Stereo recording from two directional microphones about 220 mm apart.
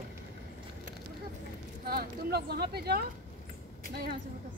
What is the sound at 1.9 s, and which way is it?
A woman's voice, 45° right (ahead or behind).